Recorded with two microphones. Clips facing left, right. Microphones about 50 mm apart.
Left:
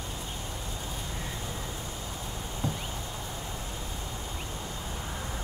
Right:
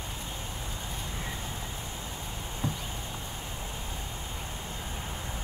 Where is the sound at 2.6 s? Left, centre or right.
Right.